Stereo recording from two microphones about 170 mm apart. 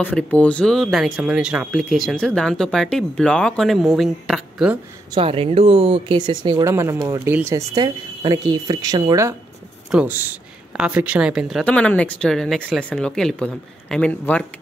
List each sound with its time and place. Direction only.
0.0 s speech: 10° left (ahead or behind)
5.1 s speech: 35° right (ahead or behind)
9.8 s speech: 10° right (ahead or behind); by 14.4 s 10° left (ahead or behind)